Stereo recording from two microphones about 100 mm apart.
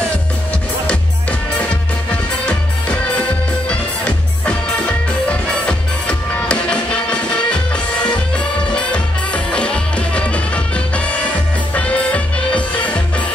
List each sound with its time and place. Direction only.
2.4 s music: 10° left (ahead or behind)
11.7 s music: 15° left (ahead or behind)